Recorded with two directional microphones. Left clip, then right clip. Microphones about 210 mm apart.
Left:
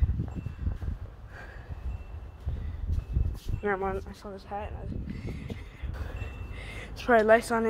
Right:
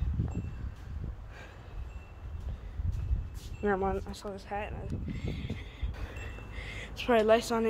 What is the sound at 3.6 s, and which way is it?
Speech, centre (ahead or behind).